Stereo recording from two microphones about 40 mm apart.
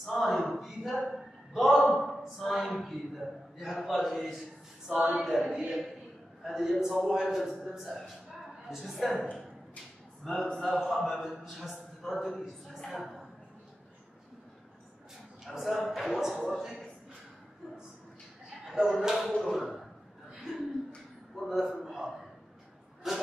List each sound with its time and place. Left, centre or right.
0.0 s a man's voice: centre
4.4 s a man's voice: centre
10.2 s a man's voice: centre
15.4 s a man's voice: centre
18.7 s a man's voice: centre
21.4 s a man's voice: centre
23.0 s a sound: centre